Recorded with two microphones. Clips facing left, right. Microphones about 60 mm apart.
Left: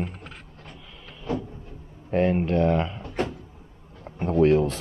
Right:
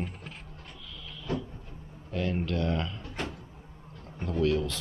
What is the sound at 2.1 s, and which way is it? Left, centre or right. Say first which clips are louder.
Speech: left 9 dB; left.